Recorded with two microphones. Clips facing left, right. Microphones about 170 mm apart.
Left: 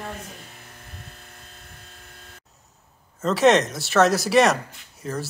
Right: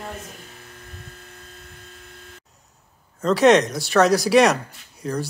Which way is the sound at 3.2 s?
Centre (ahead or behind).